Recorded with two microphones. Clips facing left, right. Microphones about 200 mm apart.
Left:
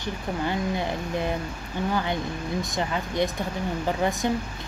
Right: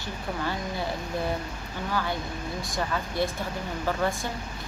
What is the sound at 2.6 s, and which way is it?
A woman's voice, 20° left (ahead or behind).